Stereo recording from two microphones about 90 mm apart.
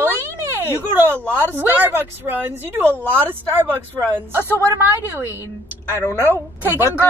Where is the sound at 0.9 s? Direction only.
25° right (ahead or behind).